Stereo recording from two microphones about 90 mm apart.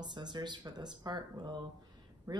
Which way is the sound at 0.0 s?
55° right (ahead or behind).